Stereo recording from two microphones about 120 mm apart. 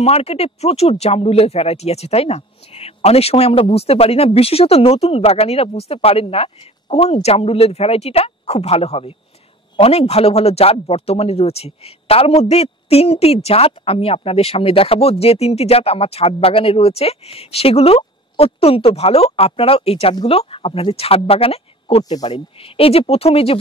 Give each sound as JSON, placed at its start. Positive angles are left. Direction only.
{"t": 0.0, "sound": "a man's voice", "side_deg": 60}
{"t": 22.1, "sound": "speech", "side_deg": 35}
{"t": 22.6, "sound": "a man's voice", "side_deg": 55}